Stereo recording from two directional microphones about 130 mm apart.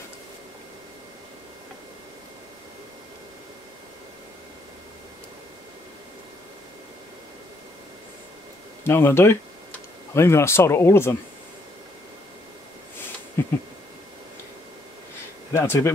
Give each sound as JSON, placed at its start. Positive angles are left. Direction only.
{"t": 8.8, "sound": "speech", "side_deg": 20}
{"t": 12.9, "sound": "a sound", "side_deg": 15}
{"t": 15.5, "sound": "speech", "side_deg": 20}